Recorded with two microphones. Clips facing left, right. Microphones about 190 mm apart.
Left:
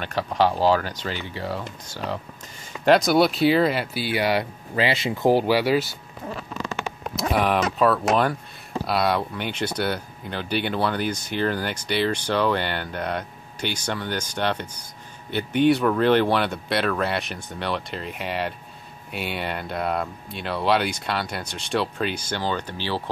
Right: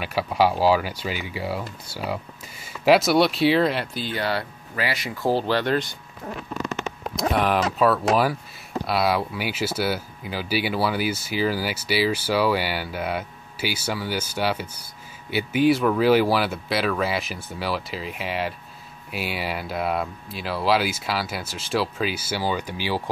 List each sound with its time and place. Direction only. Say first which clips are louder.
0.0 s speech: right 1 dB; 10° right (ahead or behind)
7.2 s speech: even; centre (ahead or behind)